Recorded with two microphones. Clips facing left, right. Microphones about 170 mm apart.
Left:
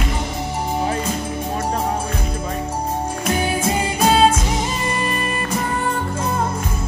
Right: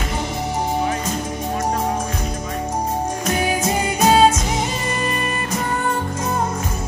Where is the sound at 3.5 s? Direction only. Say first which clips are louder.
Even; 30° left (ahead or behind).